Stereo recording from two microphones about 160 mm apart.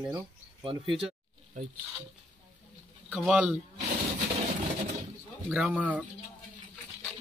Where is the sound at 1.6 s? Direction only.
50° right (ahead or behind).